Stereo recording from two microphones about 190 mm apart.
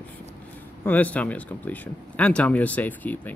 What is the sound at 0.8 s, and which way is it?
Speech, 10° left (ahead or behind).